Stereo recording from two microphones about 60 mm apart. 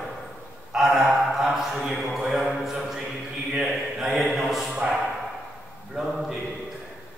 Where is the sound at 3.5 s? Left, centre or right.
Centre.